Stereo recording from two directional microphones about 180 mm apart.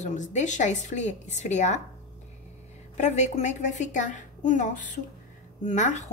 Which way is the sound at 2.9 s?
40° left (ahead or behind).